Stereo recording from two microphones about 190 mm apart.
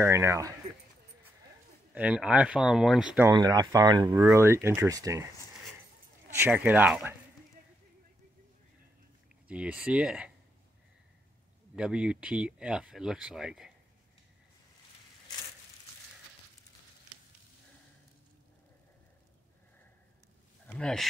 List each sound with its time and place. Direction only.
0.0 s speech: 15° right (ahead or behind)
2.0 s speech: 5° right (ahead or behind)
3.3 s speech: 20° right (ahead or behind)
6.3 s speech: 10° right (ahead or behind)
9.5 s speech: 5° right (ahead or behind)
11.7 s speech: 5° right (ahead or behind)
20.6 s speech: 5° left (ahead or behind)